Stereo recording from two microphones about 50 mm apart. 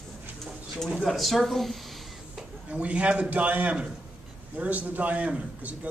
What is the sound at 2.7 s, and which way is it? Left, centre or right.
A man's voice, right.